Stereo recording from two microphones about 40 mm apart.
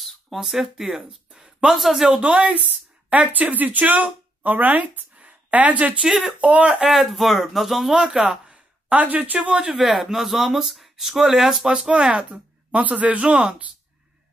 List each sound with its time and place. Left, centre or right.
0.0 s a sound: centre
1.7 s speech: centre
2.0 s speech: right
6.0 s speech: centre
6.4 s speech: right
6.7 s speech: centre
8.9 s speech: right
9.4 s speech: right
9.8 s speech: centre
11.9 s speech: right
13.3 s speech: centre